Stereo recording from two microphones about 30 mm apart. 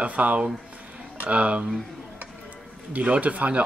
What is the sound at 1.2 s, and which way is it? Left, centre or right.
Speech, right.